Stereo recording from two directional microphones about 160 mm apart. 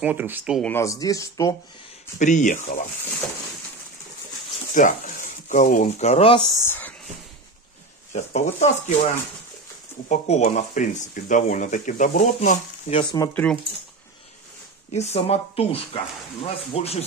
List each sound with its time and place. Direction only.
0.0 s speech: 10° right (ahead or behind)
0.6 s speech: 15° left (ahead or behind)
2.1 s speech: 50° left (ahead or behind)
4.7 s speech: 55° left (ahead or behind)
6.6 s speech: 10° left (ahead or behind)
8.1 s speech: 45° left (ahead or behind)
10.0 s speech: 45° left (ahead or behind)
13.3 s speech: 10° left (ahead or behind)
14.9 s speech: 45° left (ahead or behind)